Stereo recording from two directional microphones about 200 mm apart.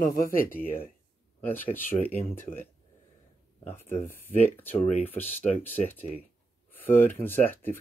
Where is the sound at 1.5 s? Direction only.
10° left (ahead or behind).